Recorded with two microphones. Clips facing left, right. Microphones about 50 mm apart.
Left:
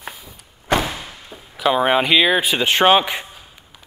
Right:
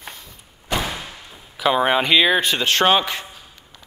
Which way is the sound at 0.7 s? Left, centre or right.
Left.